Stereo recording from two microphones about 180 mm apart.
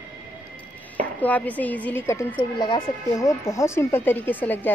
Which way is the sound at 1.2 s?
10° left (ahead or behind).